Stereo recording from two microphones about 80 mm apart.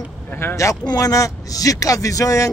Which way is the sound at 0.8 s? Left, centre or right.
Left.